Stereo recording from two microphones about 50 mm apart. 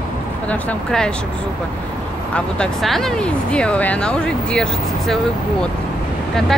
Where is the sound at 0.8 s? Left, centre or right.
Centre.